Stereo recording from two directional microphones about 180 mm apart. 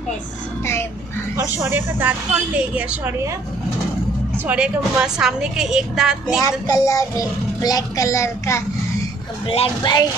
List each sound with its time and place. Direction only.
1.3 s a woman's voice: 15° right (ahead or behind)
4.5 s a woman's voice: 5° right (ahead or behind)
6.4 s a child's voice: 20° left (ahead or behind)
9.5 s speech: 30° left (ahead or behind)